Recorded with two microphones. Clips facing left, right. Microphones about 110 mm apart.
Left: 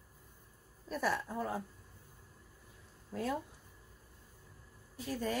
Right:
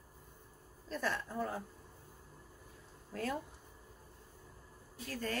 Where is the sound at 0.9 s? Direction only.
10° left (ahead or behind).